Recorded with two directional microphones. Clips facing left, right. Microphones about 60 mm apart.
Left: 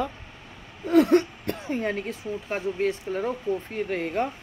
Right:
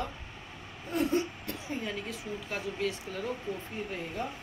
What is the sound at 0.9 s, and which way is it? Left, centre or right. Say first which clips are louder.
Hiccup: left 11 dB; left.